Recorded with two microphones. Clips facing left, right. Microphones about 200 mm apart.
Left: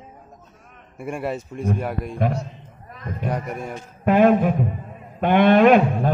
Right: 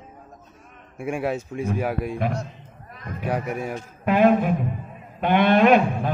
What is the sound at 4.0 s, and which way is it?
A man's voice, 45° left (ahead or behind).